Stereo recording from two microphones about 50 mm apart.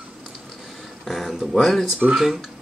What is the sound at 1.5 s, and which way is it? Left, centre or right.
Speech, centre.